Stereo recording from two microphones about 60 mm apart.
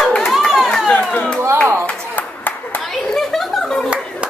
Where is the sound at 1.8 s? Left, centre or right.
Left.